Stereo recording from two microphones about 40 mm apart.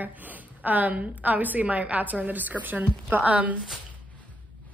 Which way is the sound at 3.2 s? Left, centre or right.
Right.